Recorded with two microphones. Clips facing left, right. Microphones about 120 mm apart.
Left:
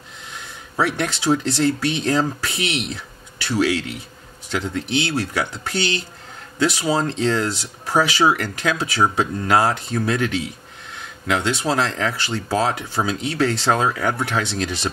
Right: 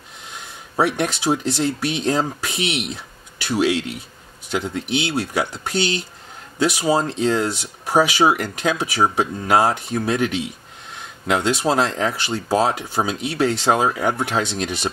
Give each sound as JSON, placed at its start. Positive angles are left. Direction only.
{"t": 0.7, "sound": "speech", "side_deg": -15}